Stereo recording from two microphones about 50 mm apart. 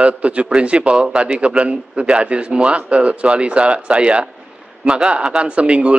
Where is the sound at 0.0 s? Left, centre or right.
Right.